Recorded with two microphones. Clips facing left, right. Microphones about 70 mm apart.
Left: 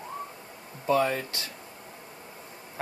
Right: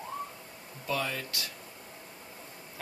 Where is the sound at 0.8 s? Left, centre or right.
Left.